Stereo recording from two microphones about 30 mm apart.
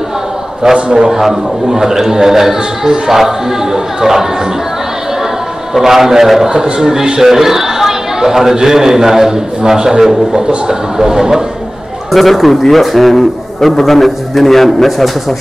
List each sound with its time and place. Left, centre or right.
0.7 s a man's voice: right
1.0 s speech: centre
5.8 s speech: centre
12.1 s a man's voice: centre